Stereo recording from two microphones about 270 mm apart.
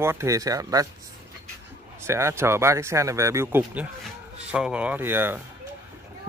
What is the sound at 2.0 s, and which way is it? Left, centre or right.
Speech, centre.